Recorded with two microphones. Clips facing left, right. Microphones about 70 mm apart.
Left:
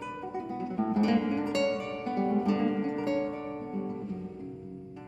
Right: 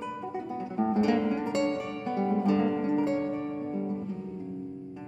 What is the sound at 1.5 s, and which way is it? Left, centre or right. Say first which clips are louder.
Music: left 2 dB; right.